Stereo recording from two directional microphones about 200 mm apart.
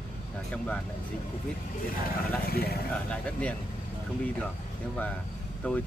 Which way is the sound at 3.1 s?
5° left (ahead or behind).